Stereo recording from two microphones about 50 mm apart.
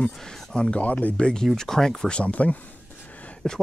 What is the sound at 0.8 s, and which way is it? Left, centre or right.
Speech, left.